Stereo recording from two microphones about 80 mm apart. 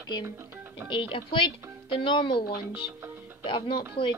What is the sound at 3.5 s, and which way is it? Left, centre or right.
Speech, left.